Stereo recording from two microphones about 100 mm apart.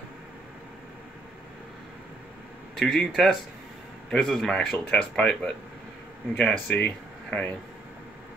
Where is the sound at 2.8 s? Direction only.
5° left (ahead or behind).